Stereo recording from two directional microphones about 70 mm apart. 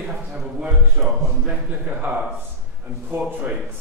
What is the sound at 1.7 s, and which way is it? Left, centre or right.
A man's voice, right.